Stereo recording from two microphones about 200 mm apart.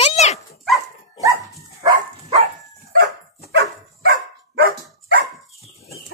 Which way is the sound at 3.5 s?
60° right (ahead or behind).